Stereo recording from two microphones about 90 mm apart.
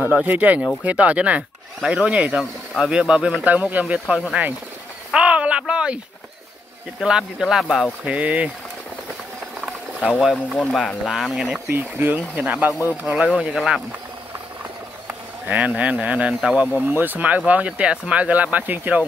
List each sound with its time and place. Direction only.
0.0 s speech: 20° right (ahead or behind)
5.1 s a sound: 15° right (ahead or behind)
7.0 s speech: 5° right (ahead or behind)
8.1 s speech: 15° right (ahead or behind)
9.7 s a sound: 5° right (ahead or behind)
10.5 s speech: centre (ahead or behind)
11.7 s speech: 25° right (ahead or behind)
12.4 s speech: 15° right (ahead or behind)
13.0 s speech: 5° right (ahead or behind)
15.0 s speech: 15° right (ahead or behind)
16.8 s speech: 20° right (ahead or behind)